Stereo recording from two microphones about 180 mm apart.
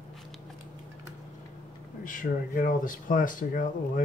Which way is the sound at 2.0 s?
50° left (ahead or behind).